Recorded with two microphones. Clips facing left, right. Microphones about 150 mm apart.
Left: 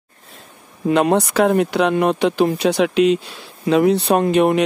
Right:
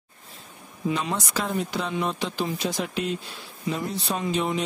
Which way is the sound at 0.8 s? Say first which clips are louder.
Left 12 dB; 60° left (ahead or behind).